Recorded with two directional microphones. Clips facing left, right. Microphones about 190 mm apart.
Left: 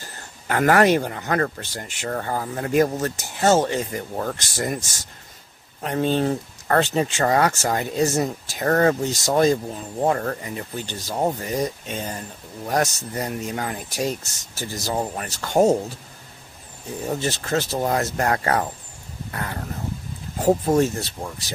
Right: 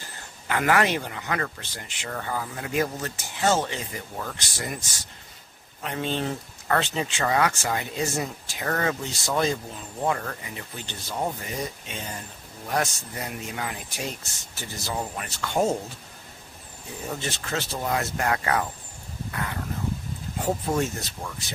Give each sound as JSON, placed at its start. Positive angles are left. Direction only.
{"t": 0.5, "sound": "speech", "side_deg": 45}
{"t": 17.1, "sound": "speech", "side_deg": 40}